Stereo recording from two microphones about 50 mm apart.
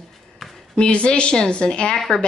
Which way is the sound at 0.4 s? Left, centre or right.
Centre.